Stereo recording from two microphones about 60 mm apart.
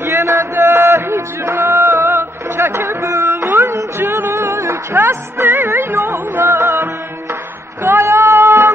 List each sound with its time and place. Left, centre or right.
0.0 s a sound: right
3.3 s music: right
4.9 s music: right
8.0 s music: right